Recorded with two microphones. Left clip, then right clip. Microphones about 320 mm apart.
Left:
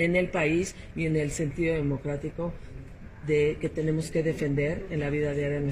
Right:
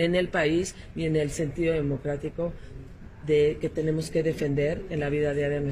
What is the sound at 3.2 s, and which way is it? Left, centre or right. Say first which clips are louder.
Speech: right 2 dB; right.